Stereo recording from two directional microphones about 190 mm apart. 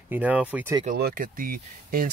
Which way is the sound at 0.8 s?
50° right (ahead or behind).